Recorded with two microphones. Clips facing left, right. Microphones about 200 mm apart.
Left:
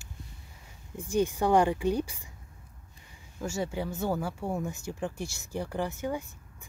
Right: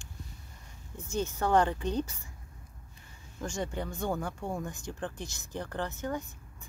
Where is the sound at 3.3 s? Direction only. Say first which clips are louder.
Left 3 dB; 5° left (ahead or behind).